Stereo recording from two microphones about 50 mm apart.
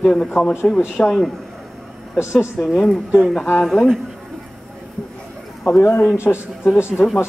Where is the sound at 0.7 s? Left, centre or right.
Centre.